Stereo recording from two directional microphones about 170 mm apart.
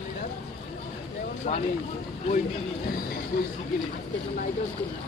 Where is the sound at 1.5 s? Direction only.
35° left (ahead or behind).